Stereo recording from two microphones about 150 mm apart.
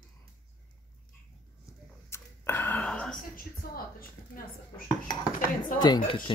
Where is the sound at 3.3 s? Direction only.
75° left (ahead or behind).